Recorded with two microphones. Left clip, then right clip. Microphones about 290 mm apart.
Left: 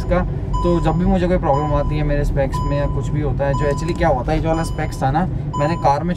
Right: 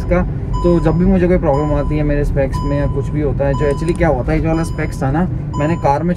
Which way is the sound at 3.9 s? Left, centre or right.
Left.